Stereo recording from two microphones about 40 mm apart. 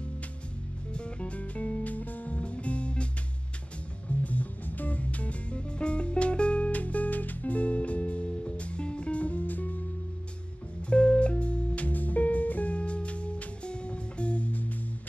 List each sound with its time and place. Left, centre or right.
0.9 s music: left
4.2 s music: left
10.9 s music: left